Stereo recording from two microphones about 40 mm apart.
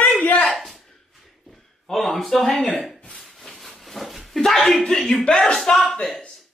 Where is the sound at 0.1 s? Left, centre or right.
Left.